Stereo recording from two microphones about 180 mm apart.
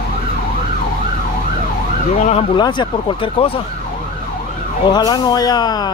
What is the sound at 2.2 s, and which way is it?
Speech, 35° left (ahead or behind).